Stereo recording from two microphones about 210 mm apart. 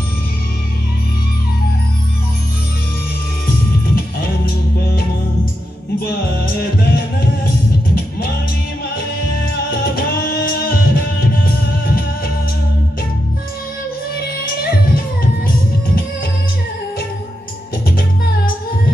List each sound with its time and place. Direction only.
3.4 s music: 45° left (ahead or behind)
14.6 s music: 45° left (ahead or behind)